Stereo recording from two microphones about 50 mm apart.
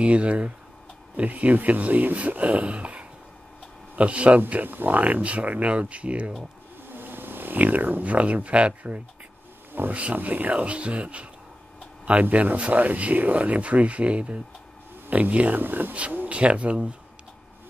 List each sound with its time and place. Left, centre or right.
0.0 s speech: right
4.5 s speech: right
6.9 s speech: right
9.7 s a sound: right
10.1 s speech: right
15.9 s speech: right